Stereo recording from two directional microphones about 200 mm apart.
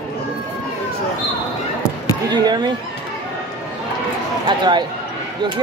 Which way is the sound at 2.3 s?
20° right (ahead or behind).